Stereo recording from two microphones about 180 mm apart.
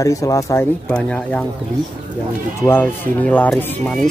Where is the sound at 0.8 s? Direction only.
5° left (ahead or behind).